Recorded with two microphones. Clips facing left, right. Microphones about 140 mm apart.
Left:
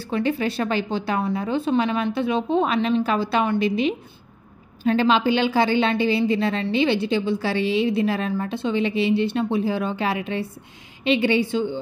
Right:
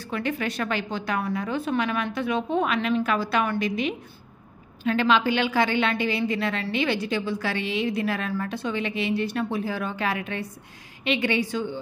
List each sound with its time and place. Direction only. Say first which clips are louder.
0.0 s a woman's voice: left 5 dB; 30° left (ahead or behind)